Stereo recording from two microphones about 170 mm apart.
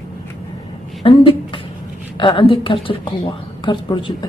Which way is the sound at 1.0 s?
30° left (ahead or behind).